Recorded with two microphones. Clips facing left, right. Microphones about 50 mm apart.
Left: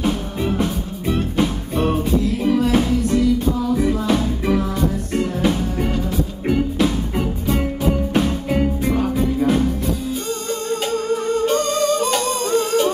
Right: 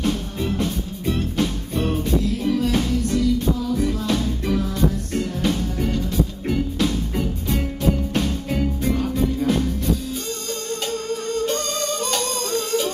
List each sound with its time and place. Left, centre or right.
0.0 s music: centre
10.7 s music: centre